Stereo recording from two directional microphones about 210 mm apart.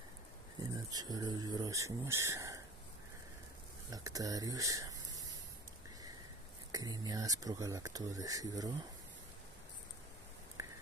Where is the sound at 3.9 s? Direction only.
15° right (ahead or behind).